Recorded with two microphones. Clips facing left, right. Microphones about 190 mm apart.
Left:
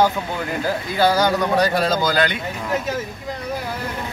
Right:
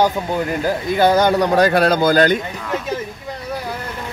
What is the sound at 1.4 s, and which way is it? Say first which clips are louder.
Speech: right 4 dB; 50° right (ahead or behind).